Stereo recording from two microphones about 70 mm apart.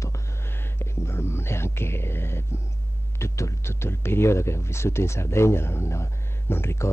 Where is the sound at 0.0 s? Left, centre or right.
Left.